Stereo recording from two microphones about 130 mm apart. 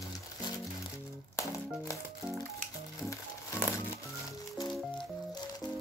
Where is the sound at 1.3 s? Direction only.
25° left (ahead or behind).